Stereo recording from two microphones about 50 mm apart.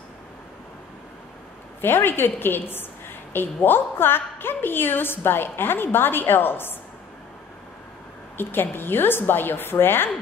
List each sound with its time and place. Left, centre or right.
1.8 s a woman's voice: left
8.4 s a woman's voice: left